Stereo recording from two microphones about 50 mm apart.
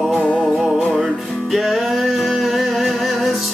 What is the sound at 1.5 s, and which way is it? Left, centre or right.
Music, centre.